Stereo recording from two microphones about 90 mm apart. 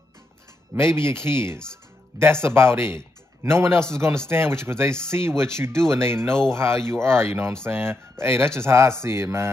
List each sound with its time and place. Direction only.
0.7 s speech: 30° right (ahead or behind)